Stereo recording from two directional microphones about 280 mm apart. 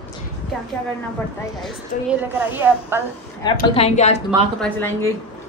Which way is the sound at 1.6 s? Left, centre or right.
Centre.